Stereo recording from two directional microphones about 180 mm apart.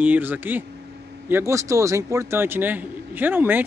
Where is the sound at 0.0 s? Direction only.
10° right (ahead or behind).